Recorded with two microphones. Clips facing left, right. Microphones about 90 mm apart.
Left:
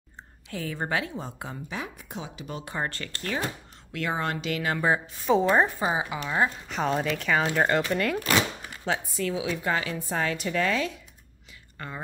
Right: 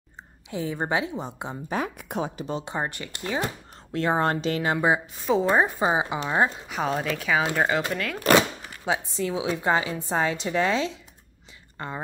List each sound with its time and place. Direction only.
0.5 s a woman's voice: 20° right (ahead or behind)
2.0 s speech: 60° right (ahead or behind)
2.4 s speech: 25° right (ahead or behind)
3.9 s speech: 35° right (ahead or behind)
4.7 s speech: 15° right (ahead or behind)
5.2 s a woman's voice: centre (ahead or behind)
5.8 s a woman's voice: 25° right (ahead or behind)
6.7 s a woman's voice: centre (ahead or behind)
9.1 s a woman's voice: 25° right (ahead or behind)